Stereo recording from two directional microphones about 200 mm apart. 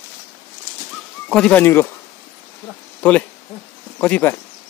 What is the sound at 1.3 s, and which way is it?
Speech, 5° left (ahead or behind).